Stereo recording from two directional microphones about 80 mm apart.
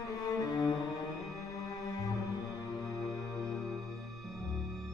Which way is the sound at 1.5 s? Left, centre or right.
Left.